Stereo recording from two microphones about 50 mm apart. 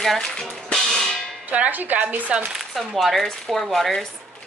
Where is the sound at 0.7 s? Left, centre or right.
Centre.